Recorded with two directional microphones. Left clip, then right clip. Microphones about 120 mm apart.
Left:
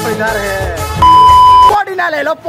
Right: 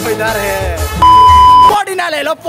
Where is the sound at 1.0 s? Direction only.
Centre (ahead or behind).